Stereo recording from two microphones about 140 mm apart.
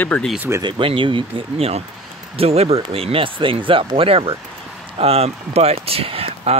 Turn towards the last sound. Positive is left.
turn(degrees=-45)  # may be behind; listen again after turning